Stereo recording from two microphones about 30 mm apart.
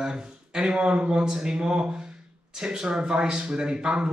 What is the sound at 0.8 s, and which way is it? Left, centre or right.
Speech, right.